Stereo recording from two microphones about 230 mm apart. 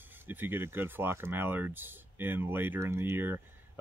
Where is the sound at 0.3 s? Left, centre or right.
Centre.